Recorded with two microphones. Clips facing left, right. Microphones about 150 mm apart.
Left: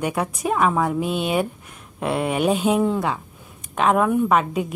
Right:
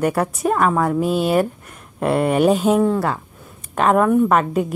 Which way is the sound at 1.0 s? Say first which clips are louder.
Right 5 dB; 40° right (ahead or behind).